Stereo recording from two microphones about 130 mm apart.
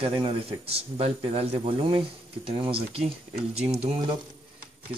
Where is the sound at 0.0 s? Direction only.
45° right (ahead or behind).